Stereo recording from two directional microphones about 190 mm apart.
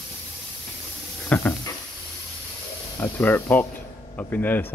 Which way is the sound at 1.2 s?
10° left (ahead or behind).